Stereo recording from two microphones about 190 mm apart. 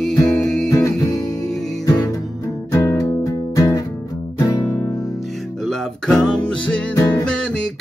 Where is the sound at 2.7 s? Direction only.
15° left (ahead or behind).